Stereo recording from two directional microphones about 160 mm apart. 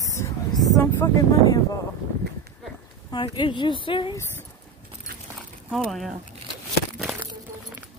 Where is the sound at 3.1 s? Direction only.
30° left (ahead or behind).